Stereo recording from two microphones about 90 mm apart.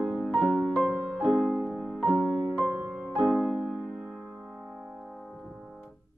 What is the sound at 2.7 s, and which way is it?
Music, 25° right (ahead or behind).